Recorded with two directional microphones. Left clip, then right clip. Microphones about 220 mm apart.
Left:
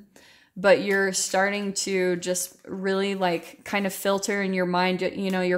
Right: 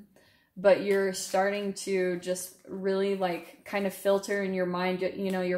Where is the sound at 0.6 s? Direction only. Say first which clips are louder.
Left 3 dB; 45° left (ahead or behind).